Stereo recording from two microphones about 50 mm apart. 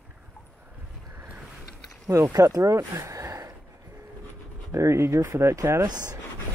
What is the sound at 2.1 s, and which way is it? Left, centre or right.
Speech, right.